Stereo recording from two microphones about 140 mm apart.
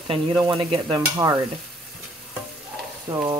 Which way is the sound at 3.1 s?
20° right (ahead or behind).